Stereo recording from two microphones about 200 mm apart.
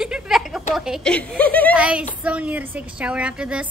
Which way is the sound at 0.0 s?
5° right (ahead or behind).